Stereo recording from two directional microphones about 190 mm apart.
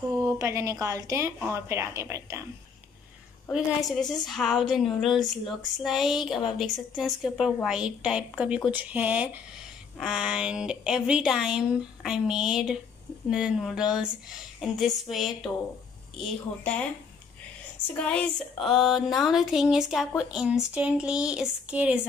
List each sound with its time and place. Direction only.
0.1 s a woman's voice: 15° right (ahead or behind)
4.1 s a woman's voice: centre (ahead or behind)
17.9 s speech: 5° left (ahead or behind)